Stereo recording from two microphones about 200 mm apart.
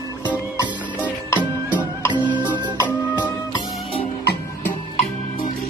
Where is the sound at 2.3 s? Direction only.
10° right (ahead or behind).